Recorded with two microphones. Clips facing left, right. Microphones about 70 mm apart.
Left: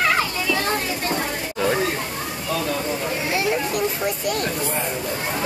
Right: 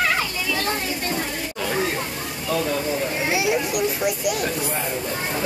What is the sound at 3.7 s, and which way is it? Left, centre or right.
Speech, centre.